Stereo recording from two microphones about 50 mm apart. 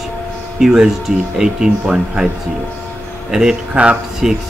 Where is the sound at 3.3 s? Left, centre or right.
Centre.